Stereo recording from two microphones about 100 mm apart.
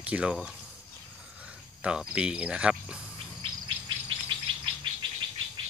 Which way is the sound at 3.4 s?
55° right (ahead or behind).